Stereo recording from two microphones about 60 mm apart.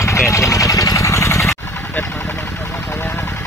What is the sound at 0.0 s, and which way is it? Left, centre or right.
Vehicle, left.